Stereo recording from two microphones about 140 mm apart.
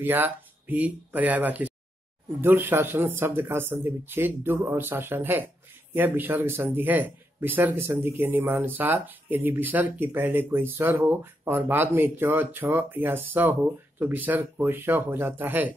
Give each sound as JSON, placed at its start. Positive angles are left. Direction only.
{"t": 0.0, "sound": "a man's voice", "side_deg": -15}